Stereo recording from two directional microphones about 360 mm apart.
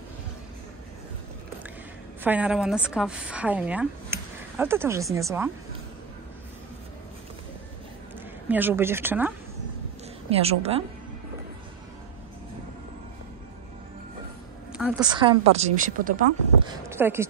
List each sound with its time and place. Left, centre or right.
2.2 s a woman's voice: centre
8.5 s a woman's voice: centre
10.4 s a woman's voice: centre
14.7 s a woman's voice: centre
15.1 s a woman's voice: centre
16.9 s a woman's voice: centre